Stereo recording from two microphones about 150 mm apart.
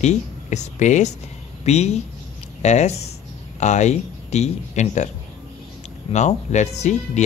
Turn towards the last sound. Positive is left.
turn(degrees=50)  # may be behind; listen again after turning